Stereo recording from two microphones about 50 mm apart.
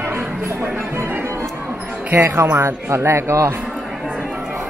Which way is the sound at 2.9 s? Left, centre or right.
Right.